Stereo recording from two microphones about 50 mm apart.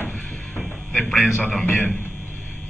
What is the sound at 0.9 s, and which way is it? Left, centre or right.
Speech, centre.